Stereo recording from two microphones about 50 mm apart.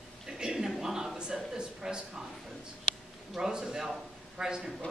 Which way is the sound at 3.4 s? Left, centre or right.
Centre.